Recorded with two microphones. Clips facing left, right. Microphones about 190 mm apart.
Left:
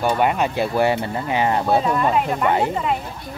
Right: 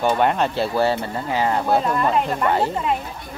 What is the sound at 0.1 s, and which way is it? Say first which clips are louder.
Speech: even; 5° left (ahead or behind).